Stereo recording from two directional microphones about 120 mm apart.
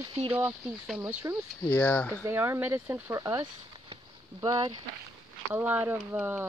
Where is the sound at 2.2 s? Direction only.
20° right (ahead or behind).